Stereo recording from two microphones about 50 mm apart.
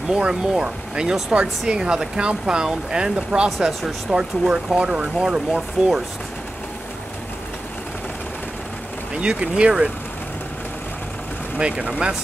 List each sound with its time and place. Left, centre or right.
0.1 s speech: centre
9.1 s speech: right
11.5 s speech: centre